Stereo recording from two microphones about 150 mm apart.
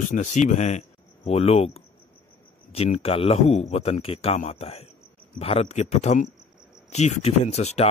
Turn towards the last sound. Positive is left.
turn(degrees=45)  # may be behind; listen again after turning